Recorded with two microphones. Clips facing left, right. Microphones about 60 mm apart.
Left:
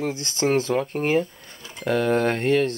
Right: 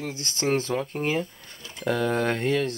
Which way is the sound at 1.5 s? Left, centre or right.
Centre.